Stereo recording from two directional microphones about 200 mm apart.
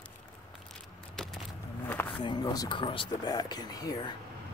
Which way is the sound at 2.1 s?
20° left (ahead or behind).